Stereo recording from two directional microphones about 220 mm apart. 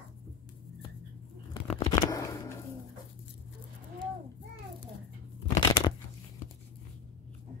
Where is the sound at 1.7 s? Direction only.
25° left (ahead or behind).